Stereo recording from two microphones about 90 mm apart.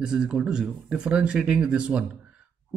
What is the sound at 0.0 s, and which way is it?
Speech, 5° right (ahead or behind).